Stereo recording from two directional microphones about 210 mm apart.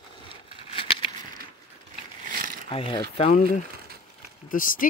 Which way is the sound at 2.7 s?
25° left (ahead or behind).